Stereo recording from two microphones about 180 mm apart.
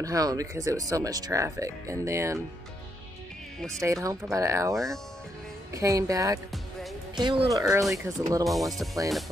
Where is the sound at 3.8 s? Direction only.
15° right (ahead or behind).